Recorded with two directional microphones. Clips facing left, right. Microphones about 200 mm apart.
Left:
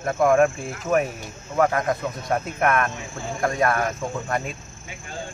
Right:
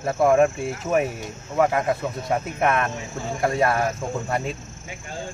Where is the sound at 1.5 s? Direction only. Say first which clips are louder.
Even; 5° right (ahead or behind).